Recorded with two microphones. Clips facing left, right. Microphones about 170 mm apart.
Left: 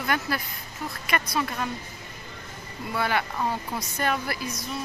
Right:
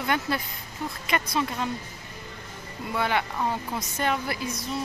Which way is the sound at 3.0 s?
20° right (ahead or behind).